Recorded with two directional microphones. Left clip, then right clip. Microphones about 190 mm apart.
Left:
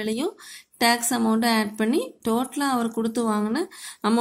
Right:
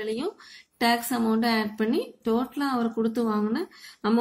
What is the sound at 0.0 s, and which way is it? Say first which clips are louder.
Speech: left 2 dB; 35° left (ahead or behind).